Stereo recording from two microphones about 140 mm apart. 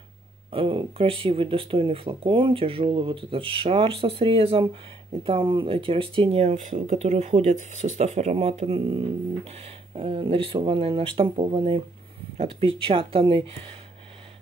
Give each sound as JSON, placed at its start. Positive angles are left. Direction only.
{"t": 0.5, "sound": "speech", "side_deg": -40}